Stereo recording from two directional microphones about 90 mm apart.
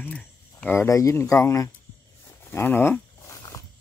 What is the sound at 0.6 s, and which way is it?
Speech, 30° left (ahead or behind).